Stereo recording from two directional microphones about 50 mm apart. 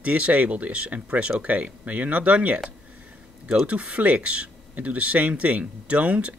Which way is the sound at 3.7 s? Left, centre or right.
Right.